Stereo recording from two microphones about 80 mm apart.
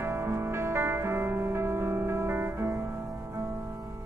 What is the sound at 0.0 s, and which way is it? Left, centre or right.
Music, right.